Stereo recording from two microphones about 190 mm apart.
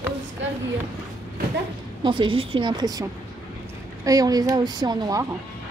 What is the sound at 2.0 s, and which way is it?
Speech, 25° right (ahead or behind).